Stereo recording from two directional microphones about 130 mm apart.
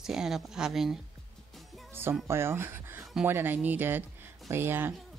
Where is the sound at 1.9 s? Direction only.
20° right (ahead or behind).